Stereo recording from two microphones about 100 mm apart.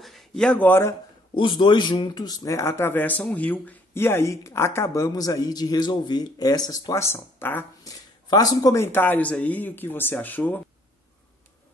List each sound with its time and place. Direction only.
0.0 s a sound: centre (ahead or behind)
0.5 s speech: 20° left (ahead or behind)
1.3 s speech: 50° left (ahead or behind)
6.9 s speech: 25° left (ahead or behind)
7.8 s a sound: 35° left (ahead or behind)
8.8 s speech: 20° left (ahead or behind)